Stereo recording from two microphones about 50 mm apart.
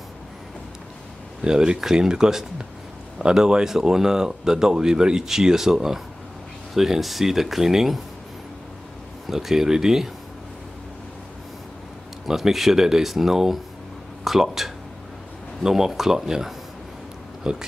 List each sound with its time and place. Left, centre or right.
1.4 s speech: centre
9.3 s speech: centre
12.3 s speech: centre